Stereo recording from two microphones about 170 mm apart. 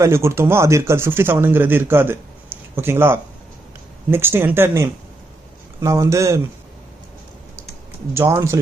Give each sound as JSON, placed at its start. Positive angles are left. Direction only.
{"t": 0.0, "sound": "speech", "side_deg": -15}
{"t": 8.1, "sound": "speech", "side_deg": -15}